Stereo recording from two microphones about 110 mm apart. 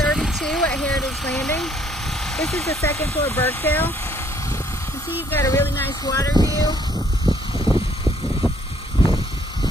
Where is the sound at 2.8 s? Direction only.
20° left (ahead or behind).